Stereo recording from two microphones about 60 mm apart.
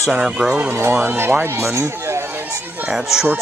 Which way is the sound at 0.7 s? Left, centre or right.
Right.